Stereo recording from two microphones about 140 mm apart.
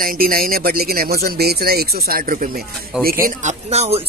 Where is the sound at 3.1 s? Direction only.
85° right.